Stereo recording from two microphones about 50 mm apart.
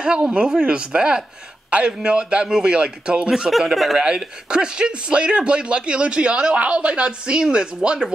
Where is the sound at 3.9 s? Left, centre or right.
Centre.